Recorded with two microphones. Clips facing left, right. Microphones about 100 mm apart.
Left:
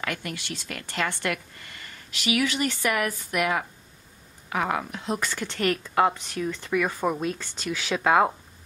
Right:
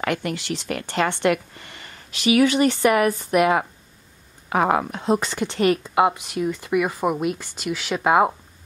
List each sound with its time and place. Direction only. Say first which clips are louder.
0.0 s a woman's voice: right 8 dB; 30° right (ahead or behind)
5.2 s speech: right 6 dB; 20° right (ahead or behind)